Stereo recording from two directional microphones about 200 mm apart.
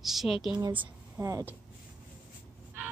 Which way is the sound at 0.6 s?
10° right (ahead or behind).